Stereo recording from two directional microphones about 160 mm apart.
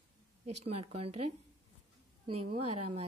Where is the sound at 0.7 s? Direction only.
40° right (ahead or behind).